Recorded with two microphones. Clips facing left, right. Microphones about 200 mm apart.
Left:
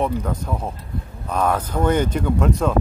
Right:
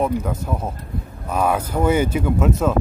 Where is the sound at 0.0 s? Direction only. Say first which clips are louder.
Right 1 dB; 5° right (ahead or behind).